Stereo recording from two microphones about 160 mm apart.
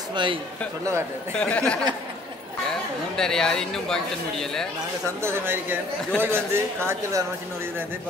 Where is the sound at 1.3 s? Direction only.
5° left (ahead or behind).